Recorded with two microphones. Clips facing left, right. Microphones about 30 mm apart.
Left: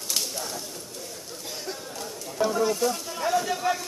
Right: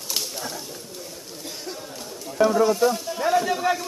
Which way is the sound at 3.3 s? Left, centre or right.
Centre.